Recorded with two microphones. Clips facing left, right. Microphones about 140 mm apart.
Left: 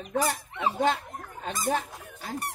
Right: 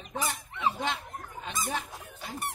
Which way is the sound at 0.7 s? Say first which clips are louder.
Left 7 dB; 45° left (ahead or behind).